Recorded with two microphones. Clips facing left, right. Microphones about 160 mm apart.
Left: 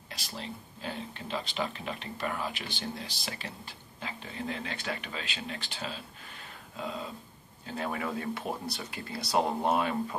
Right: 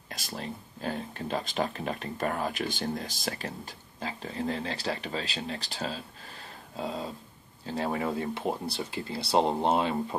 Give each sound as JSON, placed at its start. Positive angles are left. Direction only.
{"t": 0.1, "sound": "speech", "side_deg": -45}